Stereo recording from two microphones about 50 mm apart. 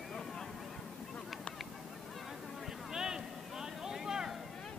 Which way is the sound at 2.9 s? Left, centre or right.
Centre.